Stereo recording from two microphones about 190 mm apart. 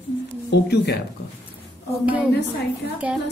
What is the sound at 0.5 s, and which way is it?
Speech, 60° left (ahead or behind).